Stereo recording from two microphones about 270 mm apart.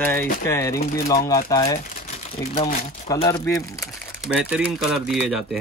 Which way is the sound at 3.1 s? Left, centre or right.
Centre.